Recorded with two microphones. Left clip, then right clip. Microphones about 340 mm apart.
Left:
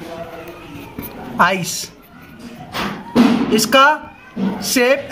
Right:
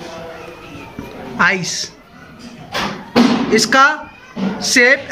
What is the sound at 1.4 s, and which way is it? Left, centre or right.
Speech, centre.